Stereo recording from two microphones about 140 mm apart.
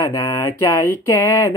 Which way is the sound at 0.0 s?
25° left (ahead or behind).